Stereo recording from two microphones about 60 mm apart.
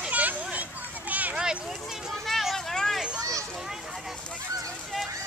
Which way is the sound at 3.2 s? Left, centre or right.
Right.